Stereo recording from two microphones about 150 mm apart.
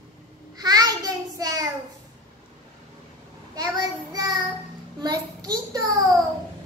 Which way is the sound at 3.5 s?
25° right (ahead or behind).